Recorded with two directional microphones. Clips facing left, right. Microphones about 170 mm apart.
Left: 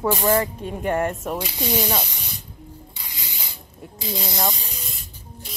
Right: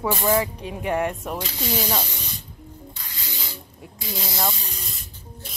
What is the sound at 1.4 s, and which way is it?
Speech, 15° left (ahead or behind).